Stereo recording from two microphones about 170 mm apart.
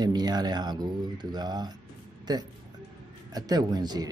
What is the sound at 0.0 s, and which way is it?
Speech, 25° right (ahead or behind).